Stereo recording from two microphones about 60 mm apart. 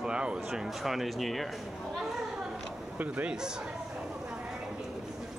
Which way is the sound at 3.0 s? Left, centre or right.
Right.